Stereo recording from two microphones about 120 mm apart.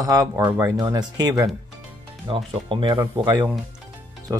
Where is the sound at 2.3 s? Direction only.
45° right (ahead or behind).